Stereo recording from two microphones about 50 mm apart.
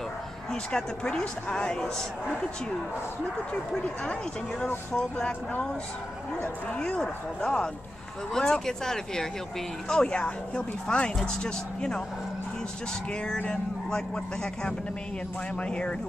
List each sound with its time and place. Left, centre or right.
0.5 s a woman's voice: centre
3.7 s a woman's voice: left
13.5 s a woman's voice: centre